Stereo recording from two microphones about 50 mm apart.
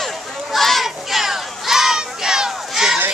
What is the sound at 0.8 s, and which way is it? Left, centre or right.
Crowd, centre.